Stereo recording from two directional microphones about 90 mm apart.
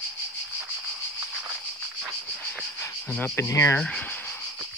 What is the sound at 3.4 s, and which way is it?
Speech, 35° left (ahead or behind).